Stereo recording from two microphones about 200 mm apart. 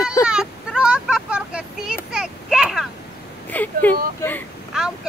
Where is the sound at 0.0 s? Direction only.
15° left (ahead or behind).